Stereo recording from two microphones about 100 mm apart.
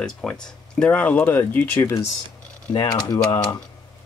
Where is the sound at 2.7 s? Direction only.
45° left (ahead or behind).